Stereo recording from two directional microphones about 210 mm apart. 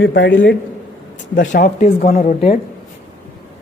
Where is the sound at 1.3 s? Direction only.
40° left (ahead or behind).